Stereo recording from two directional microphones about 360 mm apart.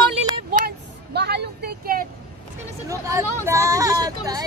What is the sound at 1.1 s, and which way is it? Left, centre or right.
Vehicle, right.